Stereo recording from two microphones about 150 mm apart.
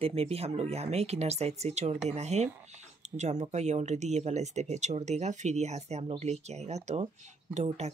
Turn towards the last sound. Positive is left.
turn(degrees=-45)  # may be behind; listen again after turning